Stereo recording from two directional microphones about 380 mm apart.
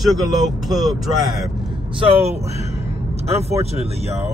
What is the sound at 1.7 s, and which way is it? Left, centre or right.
Speech, centre.